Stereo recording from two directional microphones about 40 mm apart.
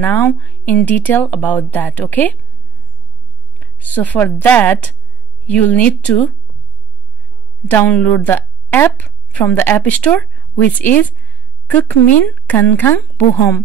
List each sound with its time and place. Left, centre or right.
0.0 s speech: left
0.3 s a woman's voice: left
0.7 s speech: left
3.5 s a woman's voice: left
7.6 s a woman's voice: left
8.4 s a sound: left
9.6 s speech: left
9.8 s speech: left